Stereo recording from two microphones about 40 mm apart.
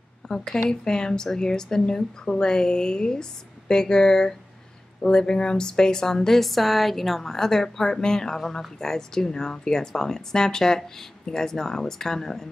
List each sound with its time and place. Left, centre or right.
0.3 s speech: centre